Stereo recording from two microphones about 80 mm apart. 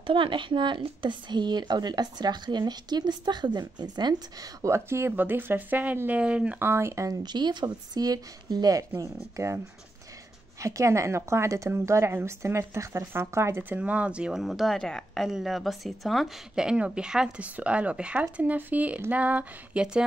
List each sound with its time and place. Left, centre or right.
0.0 s speech: right
4.6 s speech: right; by 6.7 s centre
6.7 s a woman's voice: right
7.1 s speech: right
10.6 s a woman's voice: right
13.7 s a woman's voice: centre